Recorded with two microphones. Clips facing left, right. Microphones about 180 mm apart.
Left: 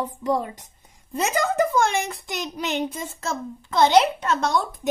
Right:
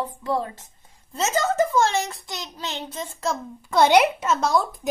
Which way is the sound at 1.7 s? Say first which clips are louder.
Even; 15° left (ahead or behind).